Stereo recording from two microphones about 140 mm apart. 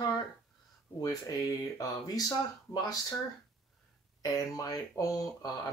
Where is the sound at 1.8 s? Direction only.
25° left (ahead or behind).